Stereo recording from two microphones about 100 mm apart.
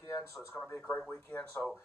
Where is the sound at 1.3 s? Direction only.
10° left (ahead or behind).